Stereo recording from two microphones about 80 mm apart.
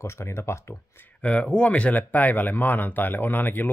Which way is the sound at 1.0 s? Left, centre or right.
Centre.